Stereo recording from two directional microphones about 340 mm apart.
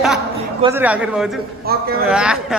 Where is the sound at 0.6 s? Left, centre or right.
Centre.